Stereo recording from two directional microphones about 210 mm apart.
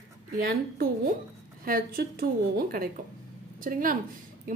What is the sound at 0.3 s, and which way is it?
A woman's voice, 45° right (ahead or behind).